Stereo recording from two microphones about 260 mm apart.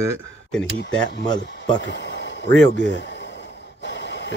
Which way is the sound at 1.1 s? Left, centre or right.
Left.